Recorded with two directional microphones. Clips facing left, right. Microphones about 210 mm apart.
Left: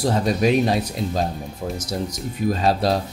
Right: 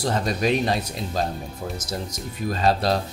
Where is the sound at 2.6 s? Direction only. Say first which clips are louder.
Even; centre (ahead or behind).